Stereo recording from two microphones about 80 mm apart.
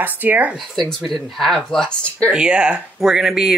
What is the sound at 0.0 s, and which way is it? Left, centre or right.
Speech, right.